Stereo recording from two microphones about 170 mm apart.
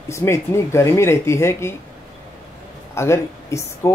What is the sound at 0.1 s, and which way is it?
Speech, 15° left (ahead or behind).